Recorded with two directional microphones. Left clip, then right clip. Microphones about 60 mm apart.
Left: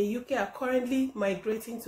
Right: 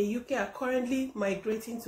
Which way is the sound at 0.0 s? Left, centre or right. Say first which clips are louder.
Left 1 dB; centre.